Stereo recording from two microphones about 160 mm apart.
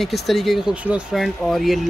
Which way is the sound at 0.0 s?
Centre (ahead or behind).